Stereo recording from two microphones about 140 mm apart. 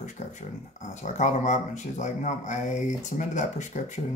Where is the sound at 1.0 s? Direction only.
55° left (ahead or behind).